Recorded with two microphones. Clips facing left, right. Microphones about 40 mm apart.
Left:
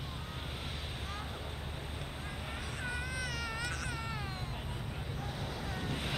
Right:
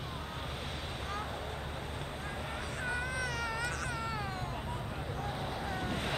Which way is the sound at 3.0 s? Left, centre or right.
Right.